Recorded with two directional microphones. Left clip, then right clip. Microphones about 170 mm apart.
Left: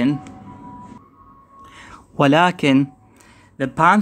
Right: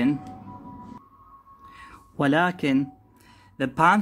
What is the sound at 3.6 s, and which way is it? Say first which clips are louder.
Speech: left 4 dB; 20° left (ahead or behind).